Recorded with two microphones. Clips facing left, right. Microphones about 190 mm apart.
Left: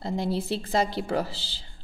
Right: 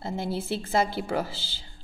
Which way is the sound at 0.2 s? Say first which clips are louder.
Left 1 dB; 35° left (ahead or behind).